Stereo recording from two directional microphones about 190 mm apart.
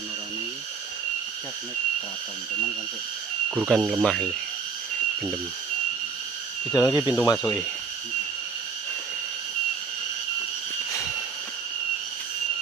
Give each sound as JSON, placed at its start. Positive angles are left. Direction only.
{"t": 3.4, "sound": "speech", "side_deg": -5}
{"t": 6.7, "sound": "speech", "side_deg": 20}